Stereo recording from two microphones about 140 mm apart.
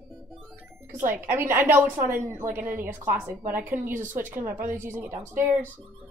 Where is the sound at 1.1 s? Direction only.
15° right (ahead or behind).